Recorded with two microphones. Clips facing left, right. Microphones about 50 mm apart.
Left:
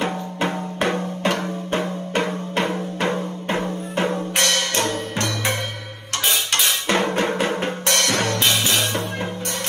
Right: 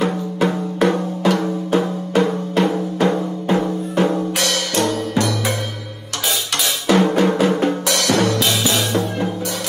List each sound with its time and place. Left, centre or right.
0.0 s drum: left
3.4 s music: left
6.2 s drum: left